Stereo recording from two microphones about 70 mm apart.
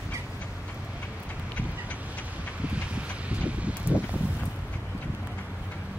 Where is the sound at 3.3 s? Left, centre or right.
Centre.